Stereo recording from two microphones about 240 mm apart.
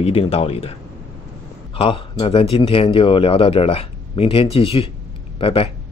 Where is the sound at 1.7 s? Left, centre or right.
Left.